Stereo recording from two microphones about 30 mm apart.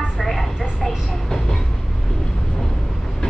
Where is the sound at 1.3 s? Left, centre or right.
Centre.